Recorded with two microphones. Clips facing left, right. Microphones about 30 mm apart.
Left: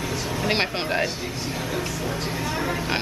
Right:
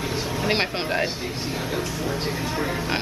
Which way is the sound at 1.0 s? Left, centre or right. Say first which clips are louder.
Even; centre.